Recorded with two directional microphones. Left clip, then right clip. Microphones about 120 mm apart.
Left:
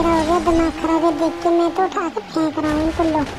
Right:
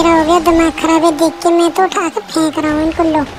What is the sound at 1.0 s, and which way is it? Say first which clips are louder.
Speech: right 6 dB; 30° right (ahead or behind).